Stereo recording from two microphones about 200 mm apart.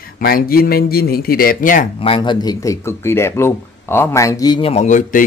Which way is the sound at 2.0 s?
25° left (ahead or behind).